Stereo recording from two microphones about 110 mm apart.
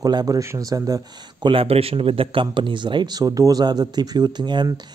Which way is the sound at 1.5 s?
55° right (ahead or behind).